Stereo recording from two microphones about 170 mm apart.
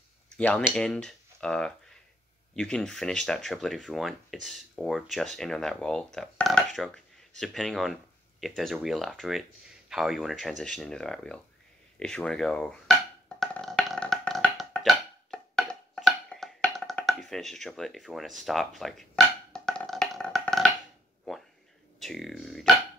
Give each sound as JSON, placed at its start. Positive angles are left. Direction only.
{"t": 0.4, "sound": "speech", "side_deg": 5}
{"t": 13.4, "sound": "music", "side_deg": 0}
{"t": 22.0, "sound": "speech", "side_deg": 0}